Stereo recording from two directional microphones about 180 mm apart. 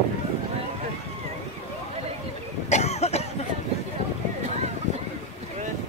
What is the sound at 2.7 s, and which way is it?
Cough, 40° left (ahead or behind).